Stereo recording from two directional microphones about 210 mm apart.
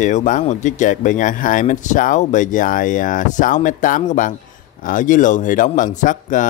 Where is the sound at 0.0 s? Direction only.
35° left (ahead or behind).